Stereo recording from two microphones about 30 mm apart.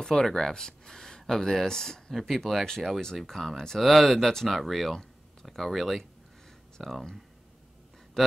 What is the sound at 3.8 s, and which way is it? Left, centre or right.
Speech, centre.